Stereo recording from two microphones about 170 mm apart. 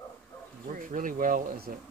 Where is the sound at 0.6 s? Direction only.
50° right (ahead or behind).